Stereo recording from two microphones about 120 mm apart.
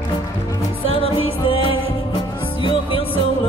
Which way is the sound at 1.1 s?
45° left (ahead or behind).